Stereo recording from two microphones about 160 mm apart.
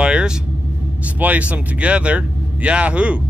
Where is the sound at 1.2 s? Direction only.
10° right (ahead or behind).